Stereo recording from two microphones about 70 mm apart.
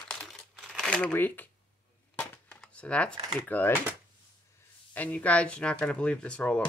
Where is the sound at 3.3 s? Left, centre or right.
Left.